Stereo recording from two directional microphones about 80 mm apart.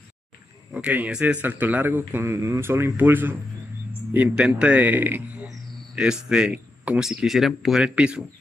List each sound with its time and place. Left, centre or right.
0.7 s a man's voice: centre
5.9 s speech: centre
7.0 s speech: centre